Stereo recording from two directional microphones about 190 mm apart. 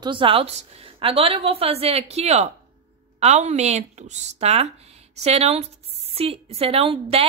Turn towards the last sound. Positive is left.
turn(degrees=-30)  # may be behind; listen again after turning